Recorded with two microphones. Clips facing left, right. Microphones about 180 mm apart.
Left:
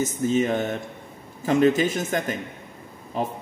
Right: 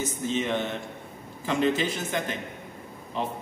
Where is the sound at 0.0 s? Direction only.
45° left (ahead or behind).